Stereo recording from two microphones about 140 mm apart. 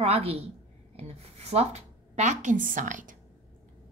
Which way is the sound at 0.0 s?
45° right (ahead or behind).